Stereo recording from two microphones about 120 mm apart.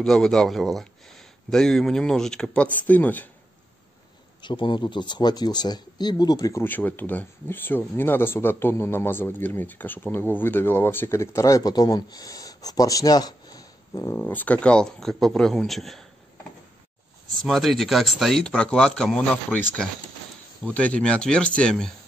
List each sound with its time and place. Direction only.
0.0 s speech: 5° left (ahead or behind)
4.4 s speech: 40° left (ahead or behind)
6.6 s speech: 15° left (ahead or behind)
14.2 s speech: 15° left (ahead or behind)
17.4 s speech: centre (ahead or behind)